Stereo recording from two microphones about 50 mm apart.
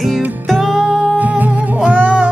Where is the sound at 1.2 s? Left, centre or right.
Right.